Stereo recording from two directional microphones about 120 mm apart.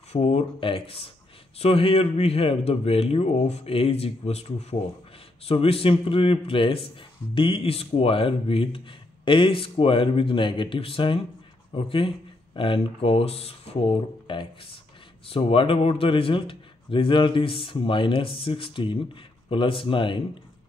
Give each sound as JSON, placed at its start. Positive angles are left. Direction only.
{"t": 0.1, "sound": "a man's voice", "side_deg": 55}